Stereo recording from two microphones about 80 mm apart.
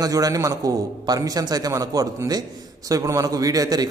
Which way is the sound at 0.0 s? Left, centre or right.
Right.